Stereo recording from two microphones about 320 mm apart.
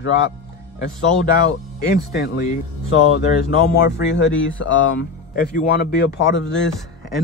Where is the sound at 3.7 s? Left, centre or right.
Left.